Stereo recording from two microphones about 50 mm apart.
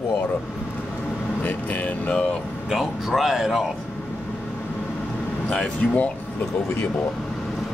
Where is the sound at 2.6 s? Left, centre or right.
Centre.